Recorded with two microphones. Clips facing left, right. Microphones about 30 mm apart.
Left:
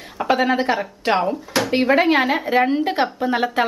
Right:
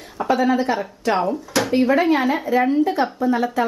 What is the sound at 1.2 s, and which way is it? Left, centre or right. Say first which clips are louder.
Speech: even; centre.